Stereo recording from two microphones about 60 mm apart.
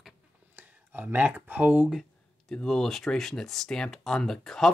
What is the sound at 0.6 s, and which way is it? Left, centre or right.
Speech, right.